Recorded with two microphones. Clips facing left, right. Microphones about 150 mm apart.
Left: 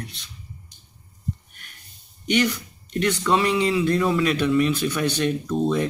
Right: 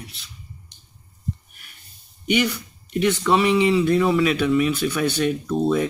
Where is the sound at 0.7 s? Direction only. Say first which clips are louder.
Left 1 dB; 70° right (ahead or behind).